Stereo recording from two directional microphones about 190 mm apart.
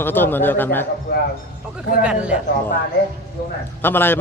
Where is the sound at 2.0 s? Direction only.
5° right (ahead or behind).